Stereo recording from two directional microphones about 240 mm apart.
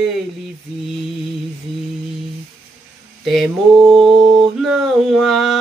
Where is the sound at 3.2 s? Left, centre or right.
Centre.